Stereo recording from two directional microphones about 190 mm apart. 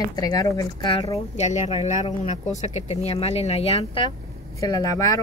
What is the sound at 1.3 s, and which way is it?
Speech, 35° left (ahead or behind).